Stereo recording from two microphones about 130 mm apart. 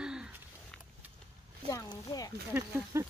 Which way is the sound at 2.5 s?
20° right (ahead or behind).